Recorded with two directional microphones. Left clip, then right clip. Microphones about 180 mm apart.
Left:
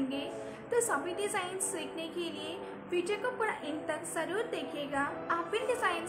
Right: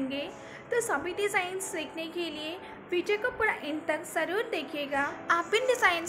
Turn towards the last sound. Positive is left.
turn(degrees=-20)  # may be behind; listen again after turning